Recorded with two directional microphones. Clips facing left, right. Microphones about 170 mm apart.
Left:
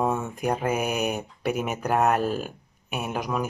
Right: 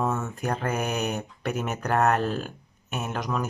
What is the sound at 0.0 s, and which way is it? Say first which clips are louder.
Speech: left 2 dB; 15° left (ahead or behind).